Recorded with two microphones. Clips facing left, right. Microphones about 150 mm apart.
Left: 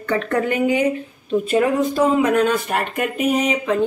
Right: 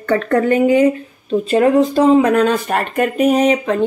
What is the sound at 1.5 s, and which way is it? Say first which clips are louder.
Speech: right 6 dB; 30° right (ahead or behind).